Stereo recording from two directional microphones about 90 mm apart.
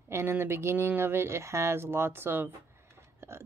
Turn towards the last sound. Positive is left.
turn(degrees=-30)  # may be behind; listen again after turning